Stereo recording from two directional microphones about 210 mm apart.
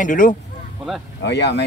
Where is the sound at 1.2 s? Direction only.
55° left (ahead or behind).